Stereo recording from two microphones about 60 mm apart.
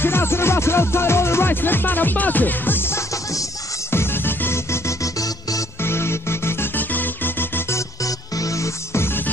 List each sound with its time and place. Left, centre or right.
0.0 s music: left
5.8 s music: left
6.8 s music: left
7.7 s music: left